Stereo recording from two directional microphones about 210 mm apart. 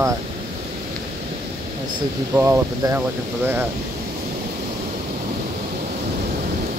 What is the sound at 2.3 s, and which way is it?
Speech, 15° right (ahead or behind).